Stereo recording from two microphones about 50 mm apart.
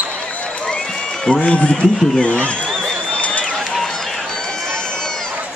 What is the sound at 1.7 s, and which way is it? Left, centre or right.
Speech, centre.